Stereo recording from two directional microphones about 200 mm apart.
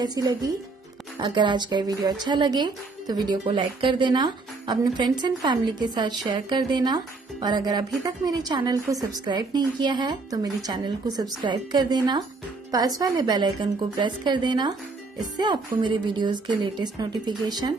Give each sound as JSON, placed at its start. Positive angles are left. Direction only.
{"t": 0.0, "sound": "speech", "side_deg": -20}